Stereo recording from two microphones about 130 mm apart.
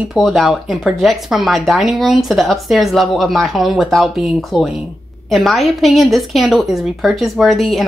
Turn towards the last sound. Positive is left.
turn(degrees=0)  # may be behind; listen again after turning